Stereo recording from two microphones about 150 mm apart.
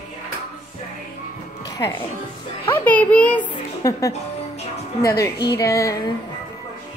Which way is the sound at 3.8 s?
20° left (ahead or behind).